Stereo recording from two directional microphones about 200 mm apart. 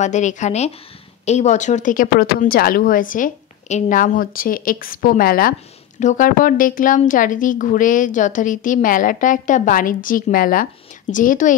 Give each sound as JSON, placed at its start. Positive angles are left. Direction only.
{"t": 0.0, "sound": "speech", "side_deg": 35}